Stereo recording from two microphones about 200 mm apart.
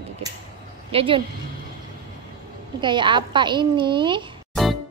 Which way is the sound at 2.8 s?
25° right (ahead or behind).